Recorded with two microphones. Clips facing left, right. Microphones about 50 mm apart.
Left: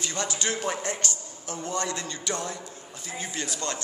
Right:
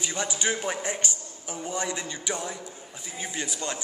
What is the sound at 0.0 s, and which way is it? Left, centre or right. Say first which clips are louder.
A man's voice: right 1 dB; centre.